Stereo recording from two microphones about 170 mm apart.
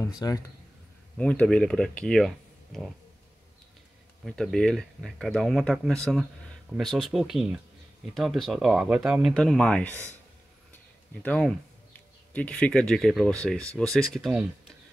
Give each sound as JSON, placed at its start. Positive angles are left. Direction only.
{"t": 0.2, "sound": "speech", "side_deg": 20}
{"t": 1.1, "sound": "speech", "side_deg": 10}
{"t": 4.2, "sound": "speech", "side_deg": 0}
{"t": 11.2, "sound": "speech", "side_deg": 5}